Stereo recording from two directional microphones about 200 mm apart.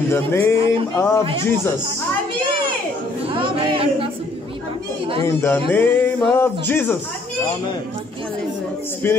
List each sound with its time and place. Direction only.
0.1 s speech: 10° left (ahead or behind)
3.3 s speech: 25° right (ahead or behind)
5.2 s speech: 10° left (ahead or behind)